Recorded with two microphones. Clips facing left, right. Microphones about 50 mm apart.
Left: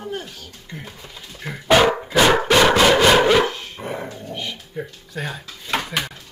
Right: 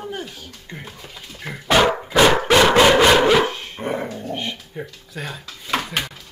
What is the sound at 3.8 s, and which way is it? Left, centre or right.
Dog, right.